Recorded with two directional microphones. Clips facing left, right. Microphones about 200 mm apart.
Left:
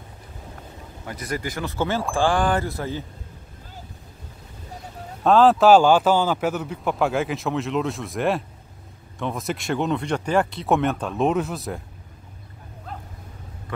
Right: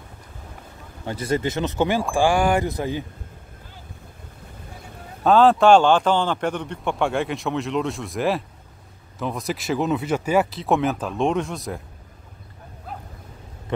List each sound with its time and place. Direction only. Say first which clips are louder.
1.0 s speech: right 6 dB; 30° right (ahead or behind)
5.2 s a man's voice: even; centre (ahead or behind)